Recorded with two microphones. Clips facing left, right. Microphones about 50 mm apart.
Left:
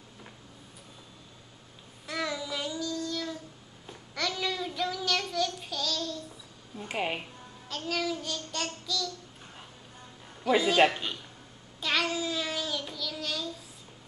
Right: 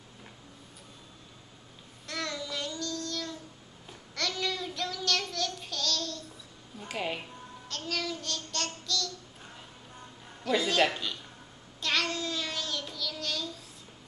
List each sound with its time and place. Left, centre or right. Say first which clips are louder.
2.0 s child singing: left 3 dB; centre
6.9 s speech: left 2 dB; left
7.6 s child singing: left 3 dB; centre
10.4 s child singing: left 3 dB; centre
11.8 s child singing: left 1 dB; centre